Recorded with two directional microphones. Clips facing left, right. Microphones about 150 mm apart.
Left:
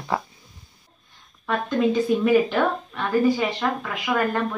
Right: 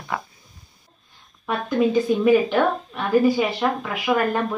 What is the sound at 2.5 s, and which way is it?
Speech, 10° right (ahead or behind).